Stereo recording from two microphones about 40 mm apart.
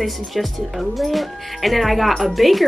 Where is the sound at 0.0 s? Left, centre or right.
Centre.